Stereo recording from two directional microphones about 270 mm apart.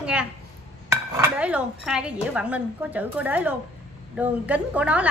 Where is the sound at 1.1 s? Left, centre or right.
Centre.